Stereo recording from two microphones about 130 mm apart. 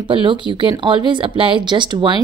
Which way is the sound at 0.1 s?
40° right (ahead or behind).